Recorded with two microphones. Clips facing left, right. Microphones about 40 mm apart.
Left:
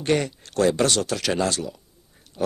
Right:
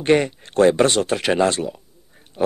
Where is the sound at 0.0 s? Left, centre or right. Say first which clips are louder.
Right 6 dB; right.